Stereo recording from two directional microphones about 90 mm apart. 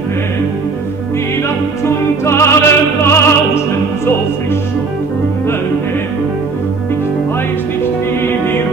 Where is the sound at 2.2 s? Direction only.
30° left (ahead or behind).